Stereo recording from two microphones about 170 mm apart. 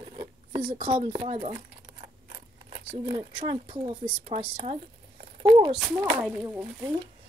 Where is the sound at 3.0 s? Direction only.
30° right (ahead or behind).